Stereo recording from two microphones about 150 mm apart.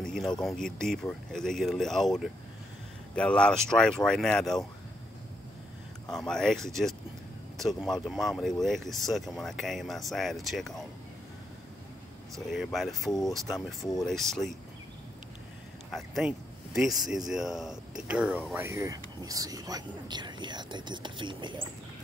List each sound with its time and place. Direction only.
0.0 s a sound: 5° left (ahead or behind)
0.4 s speech: centre (ahead or behind)
6.1 s speech: 5° left (ahead or behind)
12.4 s speech: centre (ahead or behind)
15.9 s speech: 5° right (ahead or behind); by 21.5 s 30° right (ahead or behind)